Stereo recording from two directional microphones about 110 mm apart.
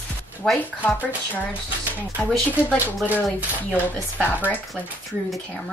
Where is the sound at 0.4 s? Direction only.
5° left (ahead or behind).